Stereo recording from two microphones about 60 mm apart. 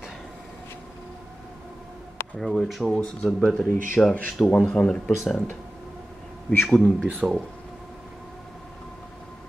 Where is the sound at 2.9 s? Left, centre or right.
Centre.